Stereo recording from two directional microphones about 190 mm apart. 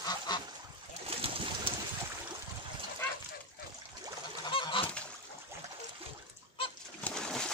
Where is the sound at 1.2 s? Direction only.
30° right (ahead or behind).